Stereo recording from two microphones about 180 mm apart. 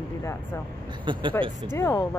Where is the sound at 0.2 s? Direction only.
15° left (ahead or behind).